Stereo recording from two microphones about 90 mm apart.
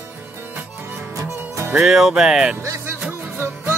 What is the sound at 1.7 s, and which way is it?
Music, 5° right (ahead or behind).